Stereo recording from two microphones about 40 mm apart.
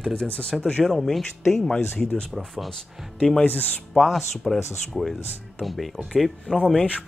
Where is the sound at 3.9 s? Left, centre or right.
Centre.